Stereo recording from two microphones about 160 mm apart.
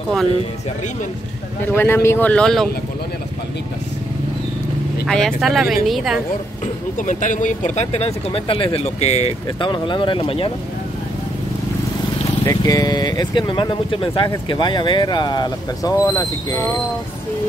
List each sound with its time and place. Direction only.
1.6 s speech: 15° left (ahead or behind)
5.0 s speech: centre (ahead or behind)
6.6 s speech: 50° left (ahead or behind)
9.6 s speech: 30° left (ahead or behind)
12.4 s speech: 20° left (ahead or behind)